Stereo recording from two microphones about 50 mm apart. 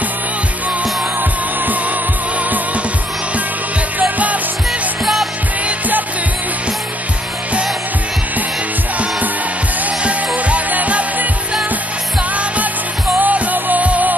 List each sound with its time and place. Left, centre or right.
4.0 s music: right
5.0 s music: centre
5.7 s music: right
9.8 s music: right